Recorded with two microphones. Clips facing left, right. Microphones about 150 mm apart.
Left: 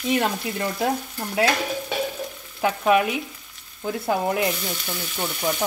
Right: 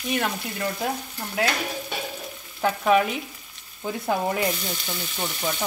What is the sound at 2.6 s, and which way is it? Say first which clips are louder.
Frying: left 1 dB; 5° left (ahead or behind).